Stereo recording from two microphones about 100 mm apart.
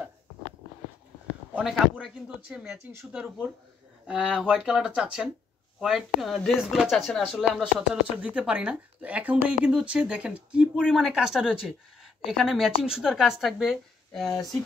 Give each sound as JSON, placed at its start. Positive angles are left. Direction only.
{"t": 1.6, "sound": "speech", "side_deg": 0}
{"t": 2.6, "sound": "speech", "side_deg": -25}
{"t": 3.1, "sound": "speech", "side_deg": -10}